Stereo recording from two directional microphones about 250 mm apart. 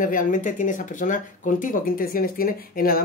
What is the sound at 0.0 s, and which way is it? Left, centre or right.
Speech, left.